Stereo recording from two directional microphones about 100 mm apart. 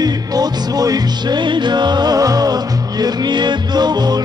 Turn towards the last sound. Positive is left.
turn(degrees=-45)  # may be behind; listen again after turning